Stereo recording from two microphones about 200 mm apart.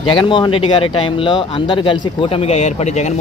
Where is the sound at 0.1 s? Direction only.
25° left (ahead or behind).